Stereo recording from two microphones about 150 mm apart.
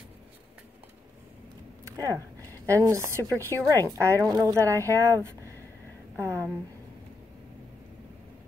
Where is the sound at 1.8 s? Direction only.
25° right (ahead or behind).